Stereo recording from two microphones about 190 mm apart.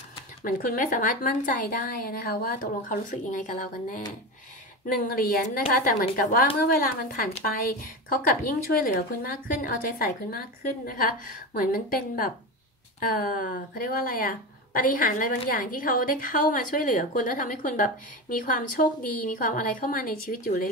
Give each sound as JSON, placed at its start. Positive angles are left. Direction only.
{"t": 0.4, "sound": "speech", "side_deg": 45}